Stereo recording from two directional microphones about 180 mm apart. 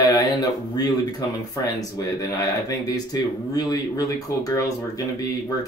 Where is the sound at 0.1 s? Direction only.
20° left (ahead or behind).